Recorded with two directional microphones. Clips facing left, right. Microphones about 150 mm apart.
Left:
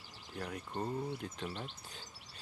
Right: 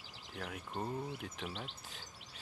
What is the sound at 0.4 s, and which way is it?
Speech, 5° right (ahead or behind).